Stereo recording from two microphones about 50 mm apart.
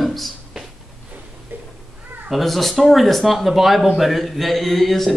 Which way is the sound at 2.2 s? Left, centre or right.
Centre.